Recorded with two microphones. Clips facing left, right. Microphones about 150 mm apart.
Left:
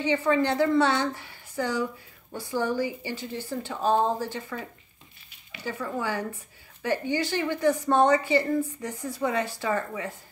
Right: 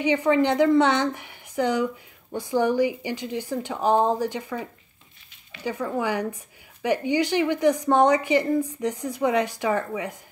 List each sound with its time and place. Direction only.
0.0 s a woman's voice: 15° right (ahead or behind)